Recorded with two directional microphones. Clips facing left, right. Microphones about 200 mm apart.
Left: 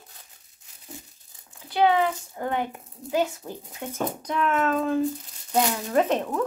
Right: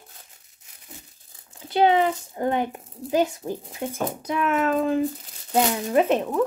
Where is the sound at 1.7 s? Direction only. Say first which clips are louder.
Right 2 dB; 25° right (ahead or behind).